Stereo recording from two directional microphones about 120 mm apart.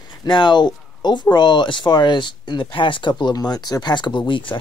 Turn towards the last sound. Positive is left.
turn(degrees=40)  # may be behind; listen again after turning